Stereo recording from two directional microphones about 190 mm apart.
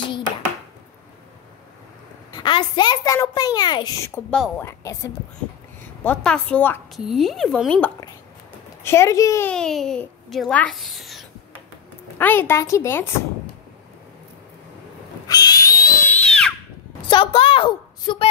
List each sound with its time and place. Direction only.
2.3 s a child's voice: 25° left (ahead or behind); by 7.9 s 5° left (ahead or behind)
8.8 s a woman's voice: 15° left (ahead or behind)
9.5 s a child's voice: 5° left (ahead or behind)
12.2 s a woman's voice: 10° left (ahead or behind)
15.2 s owl: 20° left (ahead or behind); by 16.5 s 5° left (ahead or behind)
17.1 s a sound: 25° left (ahead or behind)